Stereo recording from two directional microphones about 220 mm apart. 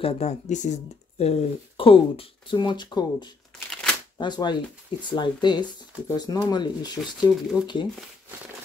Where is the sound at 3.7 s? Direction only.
Centre (ahead or behind).